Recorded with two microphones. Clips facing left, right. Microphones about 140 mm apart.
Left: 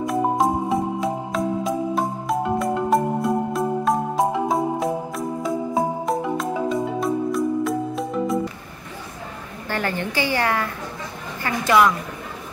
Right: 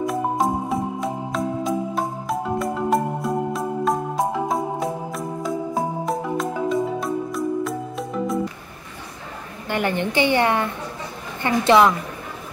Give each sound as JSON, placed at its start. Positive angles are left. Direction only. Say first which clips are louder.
{"t": 0.0, "sound": "music", "louder": "left 2 dB", "side_deg": 0}
{"t": 9.7, "sound": "a woman's voice", "louder": "right 3 dB", "side_deg": -15}